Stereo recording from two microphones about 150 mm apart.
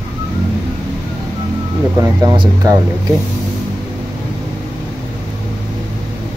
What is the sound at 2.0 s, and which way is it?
Speech, 20° right (ahead or behind).